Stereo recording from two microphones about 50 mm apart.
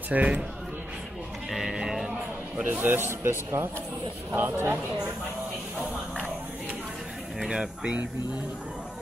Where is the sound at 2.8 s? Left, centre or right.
Right.